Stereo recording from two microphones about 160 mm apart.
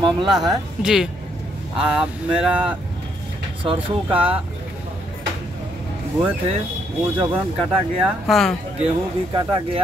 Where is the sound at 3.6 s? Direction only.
35° right (ahead or behind).